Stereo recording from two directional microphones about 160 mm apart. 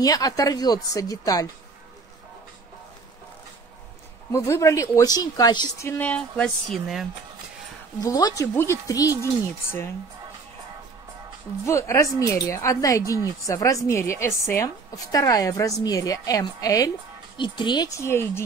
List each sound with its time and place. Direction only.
0.0 s a woman's voice: 20° left (ahead or behind)
4.3 s a woman's voice: 20° left (ahead or behind)
5.9 s speech: 10° left (ahead or behind)
8.0 s a woman's voice: 25° left (ahead or behind)
11.6 s a woman's voice: 20° left (ahead or behind)
18.0 s speech: 15° left (ahead or behind)